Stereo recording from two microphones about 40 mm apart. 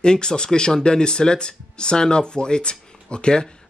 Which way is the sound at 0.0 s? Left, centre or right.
Centre.